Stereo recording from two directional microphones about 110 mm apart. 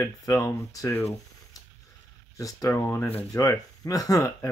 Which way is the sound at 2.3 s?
30° left (ahead or behind).